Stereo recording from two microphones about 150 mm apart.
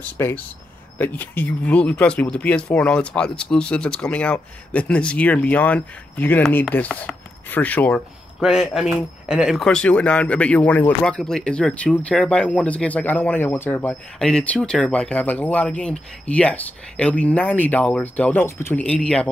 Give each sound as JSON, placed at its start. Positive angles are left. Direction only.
{"t": 0.2, "sound": "speech", "side_deg": 20}
{"t": 8.4, "sound": "speech", "side_deg": -5}